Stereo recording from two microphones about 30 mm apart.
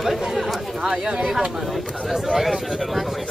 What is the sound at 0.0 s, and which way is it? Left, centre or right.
Chatter, centre.